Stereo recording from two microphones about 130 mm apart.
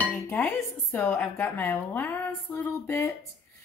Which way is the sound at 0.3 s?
20° left (ahead or behind).